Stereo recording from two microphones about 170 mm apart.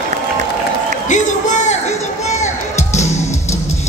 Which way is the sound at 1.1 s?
45° left (ahead or behind).